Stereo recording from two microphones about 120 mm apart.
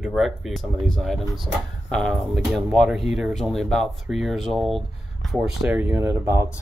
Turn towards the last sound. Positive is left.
turn(degrees=-25)  # may be behind; listen again after turning